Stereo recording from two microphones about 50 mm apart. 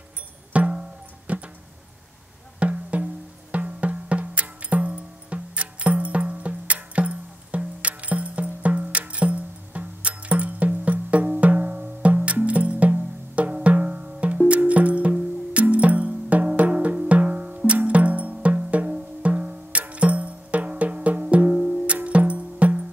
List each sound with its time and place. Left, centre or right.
0.5 s music: right
2.6 s music: right
21.9 s music: right